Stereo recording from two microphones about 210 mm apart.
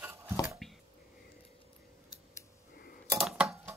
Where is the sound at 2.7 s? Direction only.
45° left (ahead or behind).